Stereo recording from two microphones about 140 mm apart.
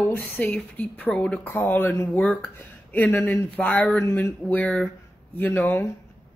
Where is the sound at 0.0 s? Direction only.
10° left (ahead or behind).